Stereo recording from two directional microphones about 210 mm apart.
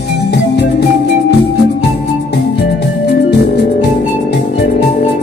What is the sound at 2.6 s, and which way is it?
Music, 55° left (ahead or behind).